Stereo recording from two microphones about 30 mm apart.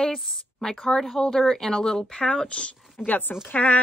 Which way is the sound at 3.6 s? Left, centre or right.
Left.